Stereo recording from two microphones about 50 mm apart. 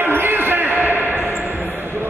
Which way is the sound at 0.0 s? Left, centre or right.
Right.